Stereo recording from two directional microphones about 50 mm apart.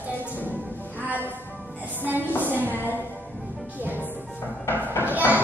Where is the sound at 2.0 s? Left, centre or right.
Right.